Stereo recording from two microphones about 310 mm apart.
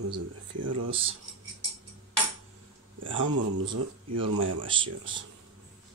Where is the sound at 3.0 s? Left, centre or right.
Right.